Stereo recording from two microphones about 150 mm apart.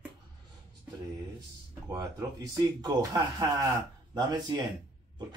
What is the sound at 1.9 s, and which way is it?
Speech, 25° right (ahead or behind).